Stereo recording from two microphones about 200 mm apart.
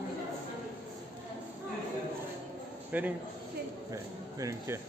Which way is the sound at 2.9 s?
10° right (ahead or behind).